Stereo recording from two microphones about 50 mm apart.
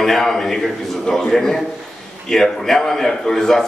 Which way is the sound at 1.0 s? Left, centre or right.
Centre.